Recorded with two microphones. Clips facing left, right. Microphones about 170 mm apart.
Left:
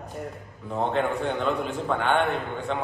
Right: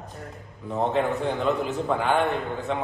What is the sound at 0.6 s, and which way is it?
A man's voice, centre (ahead or behind).